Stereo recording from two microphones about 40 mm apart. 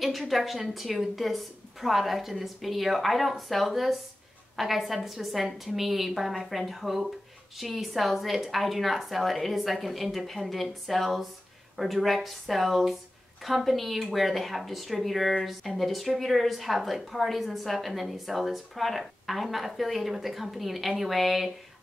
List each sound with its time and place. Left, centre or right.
0.4 s speech: centre